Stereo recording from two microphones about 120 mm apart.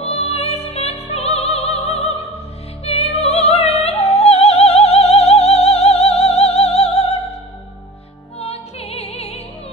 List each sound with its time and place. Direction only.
0.0 s music: 60° left (ahead or behind)
8.4 s music: 55° left (ahead or behind)